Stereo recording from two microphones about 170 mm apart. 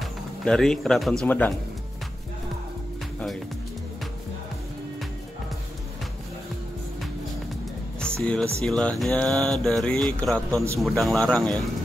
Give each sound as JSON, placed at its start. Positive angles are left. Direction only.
{"t": 0.0, "sound": "speech", "side_deg": 0}
{"t": 8.0, "sound": "music", "side_deg": 5}
{"t": 8.6, "sound": "mantra", "side_deg": 5}